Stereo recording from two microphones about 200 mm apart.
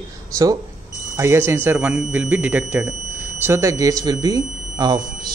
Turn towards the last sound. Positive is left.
turn(degrees=-20)  # may be behind; listen again after turning